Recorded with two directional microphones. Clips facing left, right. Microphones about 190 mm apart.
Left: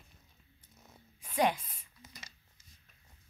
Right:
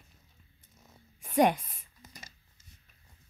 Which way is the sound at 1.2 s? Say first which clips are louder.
Right 5 dB; 55° right (ahead or behind).